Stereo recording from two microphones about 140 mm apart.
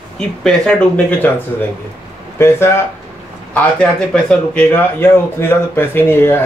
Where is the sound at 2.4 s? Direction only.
15° left (ahead or behind).